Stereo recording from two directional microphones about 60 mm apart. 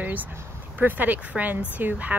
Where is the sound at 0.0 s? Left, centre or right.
Right.